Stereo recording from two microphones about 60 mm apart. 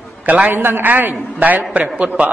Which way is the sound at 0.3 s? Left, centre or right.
Right.